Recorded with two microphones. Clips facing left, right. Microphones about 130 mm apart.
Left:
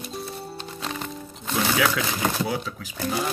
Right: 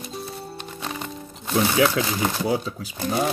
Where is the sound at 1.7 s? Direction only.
25° right (ahead or behind).